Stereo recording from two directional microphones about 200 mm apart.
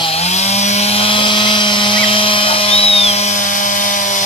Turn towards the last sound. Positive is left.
turn(degrees=40)  # may be behind; listen again after turning